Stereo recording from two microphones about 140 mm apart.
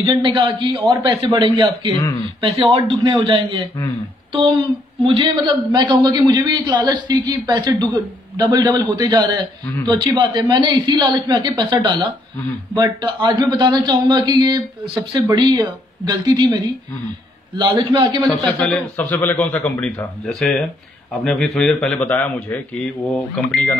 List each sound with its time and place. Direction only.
0.0 s a woman's voice: 35° right (ahead or behind)
3.3 s a woman's voice: 35° right (ahead or behind)
18.2 s a man's voice: 10° left (ahead or behind)